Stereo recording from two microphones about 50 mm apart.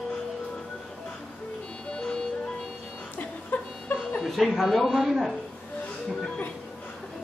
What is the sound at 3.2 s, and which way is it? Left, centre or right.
Chuckle, left.